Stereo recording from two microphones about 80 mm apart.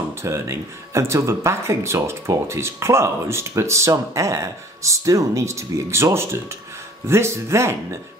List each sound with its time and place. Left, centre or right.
0.1 s speech: right